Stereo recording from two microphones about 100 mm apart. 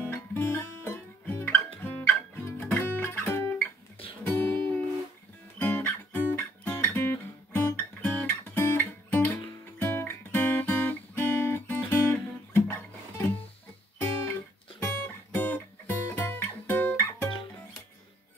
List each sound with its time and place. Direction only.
0.0 s music: 25° left (ahead or behind)
6.8 s guitar: 20° left (ahead or behind)
8.0 s music: 15° left (ahead or behind)
14.8 s music: 20° left (ahead or behind)